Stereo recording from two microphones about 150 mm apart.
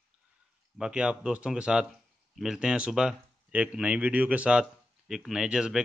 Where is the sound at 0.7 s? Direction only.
5° right (ahead or behind).